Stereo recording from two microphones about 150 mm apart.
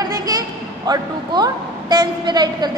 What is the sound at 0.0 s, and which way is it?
A woman's voice, 25° right (ahead or behind).